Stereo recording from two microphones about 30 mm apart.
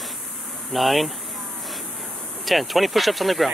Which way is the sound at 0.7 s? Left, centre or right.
Centre.